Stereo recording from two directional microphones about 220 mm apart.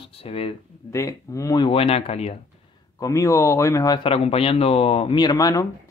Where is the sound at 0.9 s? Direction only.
15° left (ahead or behind).